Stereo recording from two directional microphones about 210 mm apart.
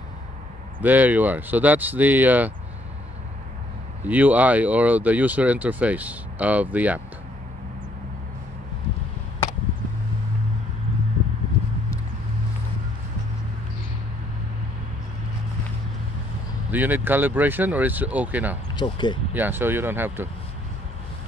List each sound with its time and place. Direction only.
0.7 s speech: 10° right (ahead or behind)
4.0 s speech: 5° right (ahead or behind)
16.7 s speech: 10° right (ahead or behind)
18.8 s speech: 20° left (ahead or behind)
19.3 s speech: 10° right (ahead or behind)